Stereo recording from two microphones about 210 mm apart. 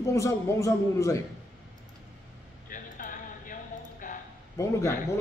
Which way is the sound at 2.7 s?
40° left (ahead or behind).